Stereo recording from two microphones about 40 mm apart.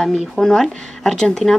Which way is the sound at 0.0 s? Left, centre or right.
Centre.